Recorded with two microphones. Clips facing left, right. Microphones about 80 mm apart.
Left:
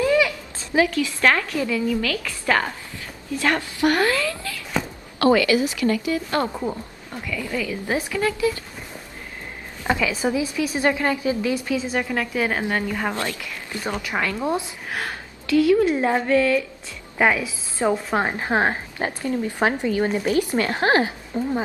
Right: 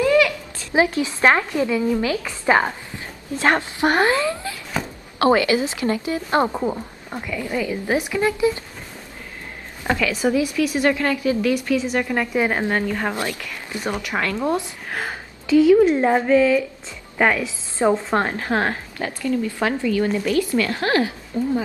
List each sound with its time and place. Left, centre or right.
0.0 s a sound: left
0.7 s a woman's voice: right
9.8 s speech: centre
12.3 s a woman's voice: centre
13.1 s a woman's voice: centre
14.4 s a woman's voice: centre
14.9 s speech: centre
15.4 s a woman's voice: centre
16.0 s speech: centre
17.2 s a woman's voice: centre; by 21.1 s left
21.3 s speech: left